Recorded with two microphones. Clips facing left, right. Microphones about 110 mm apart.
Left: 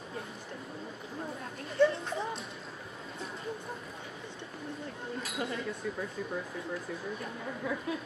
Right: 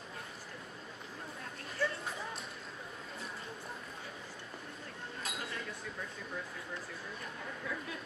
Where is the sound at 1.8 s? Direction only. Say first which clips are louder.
Left 11 dB; 20° left (ahead or behind).